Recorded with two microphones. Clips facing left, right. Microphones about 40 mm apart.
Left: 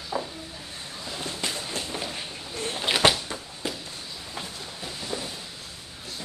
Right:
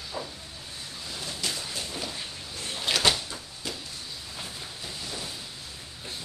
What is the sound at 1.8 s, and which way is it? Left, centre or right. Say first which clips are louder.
Vehicle: left 3 dB; left.